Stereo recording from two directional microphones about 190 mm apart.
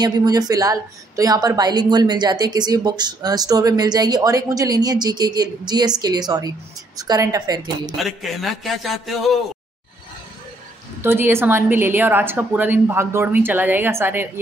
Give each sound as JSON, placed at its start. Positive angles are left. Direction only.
{"t": 0.0, "sound": "a woman's voice", "side_deg": -20}
{"t": 8.0, "sound": "a man's voice", "side_deg": 0}
{"t": 11.0, "sound": "a woman's voice", "side_deg": -10}